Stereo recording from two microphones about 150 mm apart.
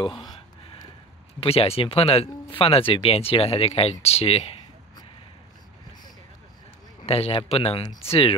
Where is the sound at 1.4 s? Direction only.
40° left (ahead or behind).